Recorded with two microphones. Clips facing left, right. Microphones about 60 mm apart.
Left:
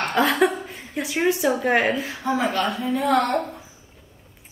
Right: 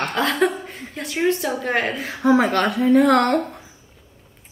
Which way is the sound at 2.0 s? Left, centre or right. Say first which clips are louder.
Right 7 dB; right.